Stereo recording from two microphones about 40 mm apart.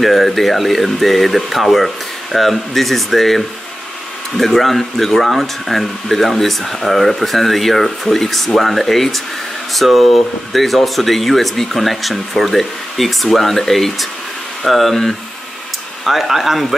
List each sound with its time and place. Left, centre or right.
0.0 s speech: centre